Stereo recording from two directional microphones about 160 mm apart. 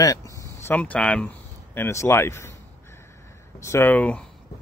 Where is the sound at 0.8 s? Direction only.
10° left (ahead or behind).